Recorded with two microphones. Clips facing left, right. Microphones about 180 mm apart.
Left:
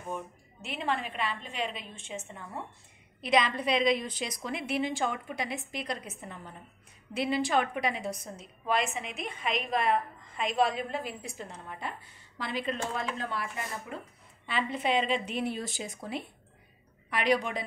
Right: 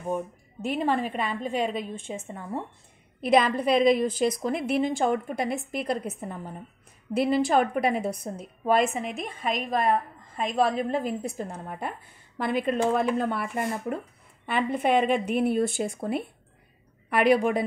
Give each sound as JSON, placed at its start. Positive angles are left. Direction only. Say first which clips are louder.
{"t": 0.7, "sound": "a woman's voice", "louder": "right 7 dB", "side_deg": -45}